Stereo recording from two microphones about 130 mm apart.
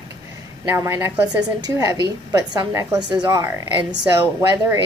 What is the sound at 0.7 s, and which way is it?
Speech, 20° right (ahead or behind).